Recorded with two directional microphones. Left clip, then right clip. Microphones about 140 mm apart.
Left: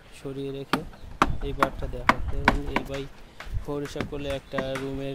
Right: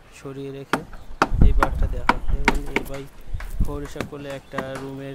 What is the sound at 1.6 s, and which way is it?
Speech, 50° left (ahead or behind).